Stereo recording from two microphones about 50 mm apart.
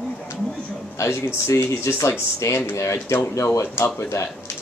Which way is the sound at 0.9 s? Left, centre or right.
Left.